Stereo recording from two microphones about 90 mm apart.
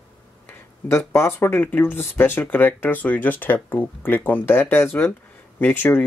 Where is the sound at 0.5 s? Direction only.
30° left (ahead or behind).